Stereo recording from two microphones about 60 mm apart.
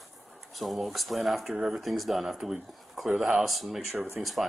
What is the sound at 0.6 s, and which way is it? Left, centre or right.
A woman's voice, centre.